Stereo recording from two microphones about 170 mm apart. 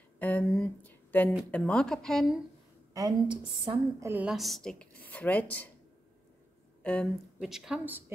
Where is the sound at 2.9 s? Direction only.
25° right (ahead or behind).